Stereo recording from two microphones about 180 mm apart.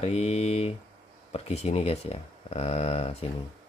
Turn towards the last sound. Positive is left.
turn(degrees=35)  # may be behind; listen again after turning